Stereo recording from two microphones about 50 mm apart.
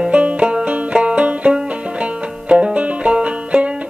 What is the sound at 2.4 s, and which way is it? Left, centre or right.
Music, right.